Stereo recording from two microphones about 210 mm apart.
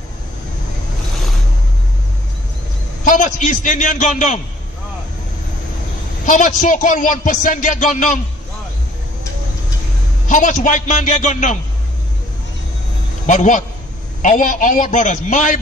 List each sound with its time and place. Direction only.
3.0 s speech: 35° left (ahead or behind)
6.2 s speech: 40° left (ahead or behind)
10.2 s speech: 35° left (ahead or behind)
13.3 s speech: 35° left (ahead or behind)